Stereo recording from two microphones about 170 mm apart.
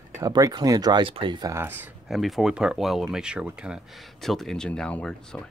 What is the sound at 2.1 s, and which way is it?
Speech, centre (ahead or behind).